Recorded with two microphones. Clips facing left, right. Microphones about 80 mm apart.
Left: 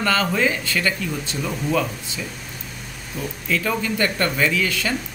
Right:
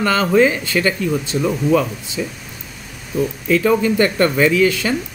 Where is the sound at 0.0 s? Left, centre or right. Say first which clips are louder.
Right 6 dB; right.